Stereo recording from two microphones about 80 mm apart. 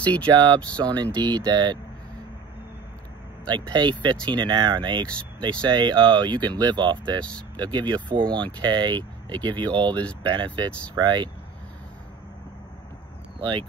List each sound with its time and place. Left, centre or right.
0.0 s speech: centre
1.1 s speech: right
3.4 s speech: right
8.5 s speech: right
9.9 s speech: centre
10.3 s speech: right
11.0 s speech: right
13.4 s speech: right